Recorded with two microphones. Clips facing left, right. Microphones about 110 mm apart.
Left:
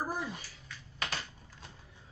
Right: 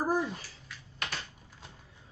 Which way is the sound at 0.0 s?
45° right (ahead or behind).